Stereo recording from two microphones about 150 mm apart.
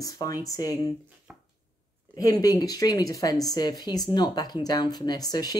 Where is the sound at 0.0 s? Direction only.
25° left (ahead or behind).